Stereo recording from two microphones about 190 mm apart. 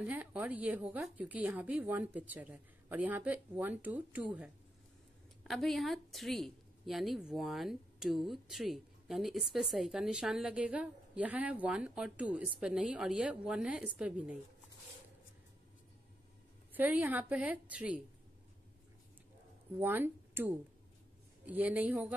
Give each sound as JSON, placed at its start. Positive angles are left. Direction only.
{"t": 0.0, "sound": "a woman's voice", "side_deg": -10}
{"t": 16.7, "sound": "a woman's voice", "side_deg": -10}
{"t": 19.8, "sound": "a woman's voice", "side_deg": -10}